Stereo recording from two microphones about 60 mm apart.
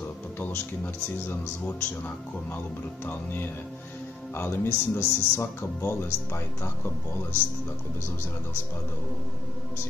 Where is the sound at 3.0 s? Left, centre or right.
Left.